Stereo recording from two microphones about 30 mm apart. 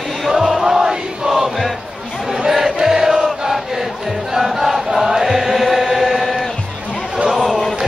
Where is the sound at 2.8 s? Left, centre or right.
Centre.